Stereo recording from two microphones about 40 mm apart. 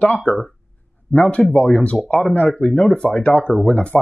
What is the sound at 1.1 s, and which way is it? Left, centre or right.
Speech, left.